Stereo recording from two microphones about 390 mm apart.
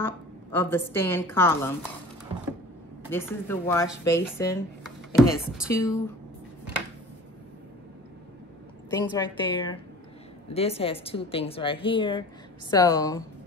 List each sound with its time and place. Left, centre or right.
0.0 s a woman's voice: centre
3.1 s a woman's voice: centre
8.9 s a woman's voice: centre